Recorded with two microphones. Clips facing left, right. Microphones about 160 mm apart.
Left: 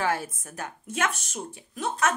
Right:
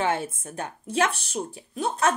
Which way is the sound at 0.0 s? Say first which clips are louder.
Right 2 dB; 25° right (ahead or behind).